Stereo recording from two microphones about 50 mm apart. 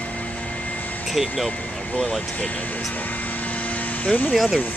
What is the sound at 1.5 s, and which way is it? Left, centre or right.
Speech, left.